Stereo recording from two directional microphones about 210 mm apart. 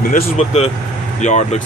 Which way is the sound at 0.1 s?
30° left (ahead or behind).